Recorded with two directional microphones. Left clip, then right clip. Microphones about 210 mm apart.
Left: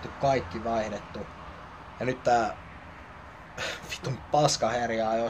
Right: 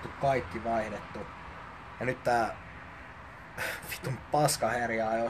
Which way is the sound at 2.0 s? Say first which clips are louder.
Left 3 dB; centre (ahead or behind).